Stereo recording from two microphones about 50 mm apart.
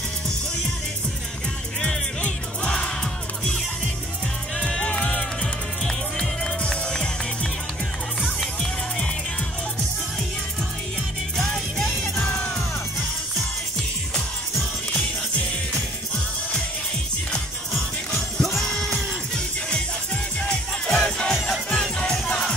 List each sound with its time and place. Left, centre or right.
4.6 s music: left
5.4 s music: centre
11.3 s music: centre
14.9 s music: centre
17.7 s music: centre
20.3 s music: centre